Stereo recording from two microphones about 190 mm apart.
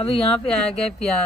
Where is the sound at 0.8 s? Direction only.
5° left (ahead or behind).